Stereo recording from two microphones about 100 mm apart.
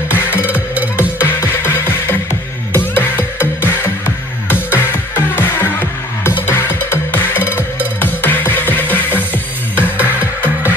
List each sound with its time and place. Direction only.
0.1 s music: 20° left (ahead or behind)
0.5 s music: 15° right (ahead or behind)
1.2 s music: 25° left (ahead or behind)